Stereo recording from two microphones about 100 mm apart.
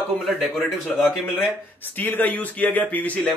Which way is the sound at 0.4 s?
Centre (ahead or behind).